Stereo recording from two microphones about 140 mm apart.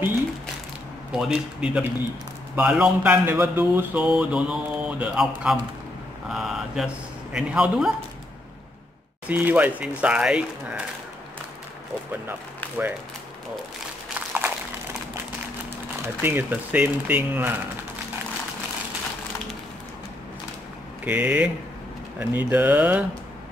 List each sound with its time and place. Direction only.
1.1 s speech: 5° right (ahead or behind)
6.2 s mantra: centre (ahead or behind)
9.3 s speech: 10° right (ahead or behind)
14.1 s a sound: 15° right (ahead or behind)
16.0 s speech: 15° right (ahead or behind)
21.0 s speech: 10° right (ahead or behind)